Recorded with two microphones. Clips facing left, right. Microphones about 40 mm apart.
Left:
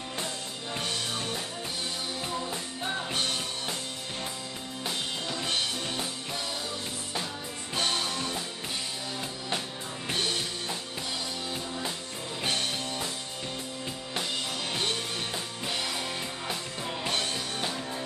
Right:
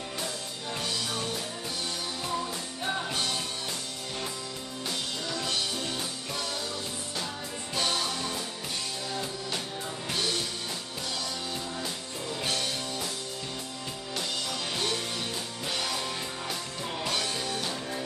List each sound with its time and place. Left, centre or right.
2.3 s music: centre
3.1 s music: left
4.8 s music: left
7.7 s music: left
10.0 s music: left
12.4 s music: left
17.0 s music: left